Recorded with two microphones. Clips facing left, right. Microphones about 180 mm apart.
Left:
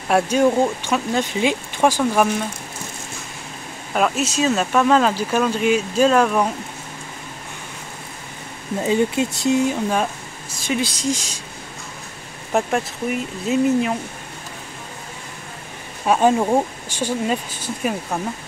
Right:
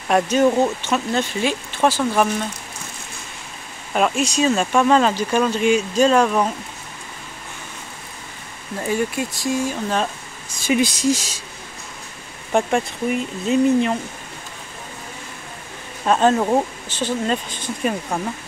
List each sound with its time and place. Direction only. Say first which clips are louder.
0.1 s speech: even; 10° left (ahead or behind)
3.9 s speech: right 1 dB; centre (ahead or behind)
8.7 s speech: left 4 dB; 20° left (ahead or behind)
10.7 s speech: right 4 dB; 10° right (ahead or behind)
12.5 s speech: right 1 dB; 5° left (ahead or behind)
16.1 s speech: even; 10° left (ahead or behind)